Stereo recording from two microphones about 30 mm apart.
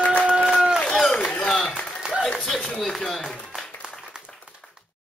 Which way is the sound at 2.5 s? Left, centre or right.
Centre.